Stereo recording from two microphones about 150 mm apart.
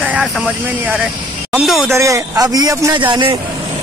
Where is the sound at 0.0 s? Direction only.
5° right (ahead or behind).